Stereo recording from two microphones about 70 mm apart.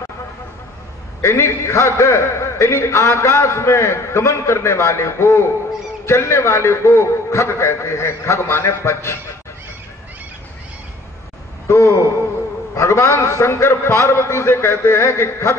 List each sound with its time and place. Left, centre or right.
1.2 s a man's voice: left
11.6 s a man's voice: left